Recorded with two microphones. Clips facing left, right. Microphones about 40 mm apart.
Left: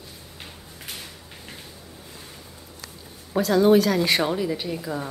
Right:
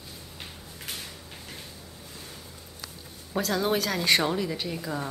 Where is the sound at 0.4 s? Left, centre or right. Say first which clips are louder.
Left 2 dB; centre.